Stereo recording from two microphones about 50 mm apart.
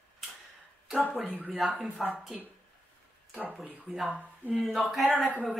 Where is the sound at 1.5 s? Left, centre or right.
Centre.